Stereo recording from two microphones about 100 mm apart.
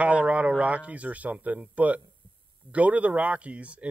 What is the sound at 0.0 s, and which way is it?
Speech, 15° right (ahead or behind).